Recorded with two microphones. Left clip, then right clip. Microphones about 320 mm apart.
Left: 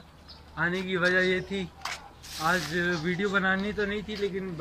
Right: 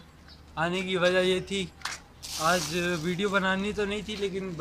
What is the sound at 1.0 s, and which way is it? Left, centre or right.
Speech, right.